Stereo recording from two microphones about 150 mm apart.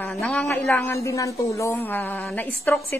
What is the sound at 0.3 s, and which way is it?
Speech, 5° left (ahead or behind).